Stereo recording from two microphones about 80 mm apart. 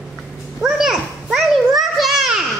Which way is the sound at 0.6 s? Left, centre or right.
Centre.